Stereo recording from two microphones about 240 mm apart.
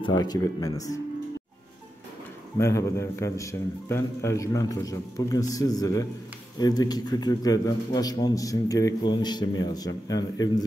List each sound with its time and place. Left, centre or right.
0.0 s a man's voice: centre
2.6 s a man's voice: centre